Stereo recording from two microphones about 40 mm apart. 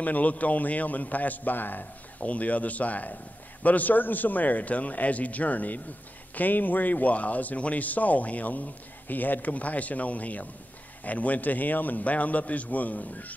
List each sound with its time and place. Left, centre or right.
0.0 s speech: left